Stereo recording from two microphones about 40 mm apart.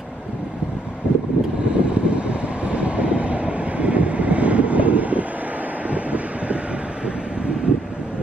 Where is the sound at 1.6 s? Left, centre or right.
Right.